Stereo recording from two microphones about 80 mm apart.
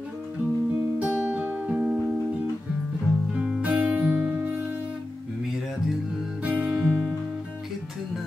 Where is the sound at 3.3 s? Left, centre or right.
Centre.